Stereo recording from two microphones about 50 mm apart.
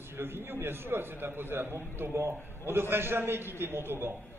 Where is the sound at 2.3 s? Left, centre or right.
Left.